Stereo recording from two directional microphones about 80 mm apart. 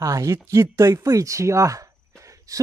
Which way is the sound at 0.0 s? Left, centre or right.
Right.